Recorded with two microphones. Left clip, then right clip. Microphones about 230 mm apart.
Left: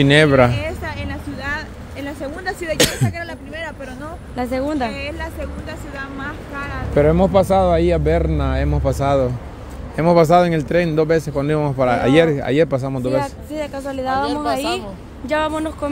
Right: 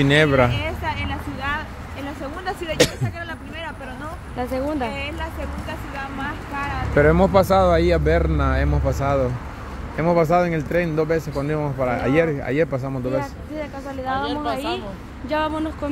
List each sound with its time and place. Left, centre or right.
0.0 s speech: left
0.5 s a sound: centre
1.5 s vehicle: left
4.4 s a woman's voice: left
4.8 s speech: centre
13.2 s a woman's voice: left
15.2 s speech: left